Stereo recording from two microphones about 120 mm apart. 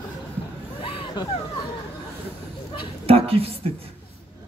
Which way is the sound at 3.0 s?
55° right (ahead or behind).